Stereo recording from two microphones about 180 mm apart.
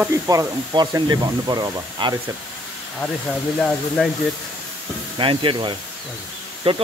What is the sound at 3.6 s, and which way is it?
Speech, 5° left (ahead or behind).